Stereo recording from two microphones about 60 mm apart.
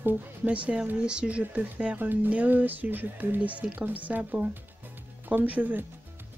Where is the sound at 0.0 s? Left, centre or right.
Right.